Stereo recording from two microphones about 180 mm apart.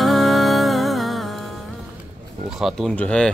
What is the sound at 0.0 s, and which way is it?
Music, centre (ahead or behind).